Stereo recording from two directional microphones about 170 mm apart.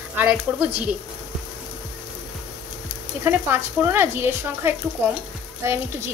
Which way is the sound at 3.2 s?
10° right (ahead or behind).